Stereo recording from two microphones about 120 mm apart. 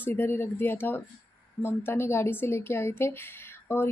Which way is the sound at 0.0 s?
15° left (ahead or behind).